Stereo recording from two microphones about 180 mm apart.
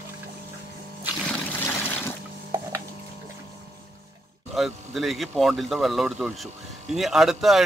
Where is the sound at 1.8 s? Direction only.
10° left (ahead or behind).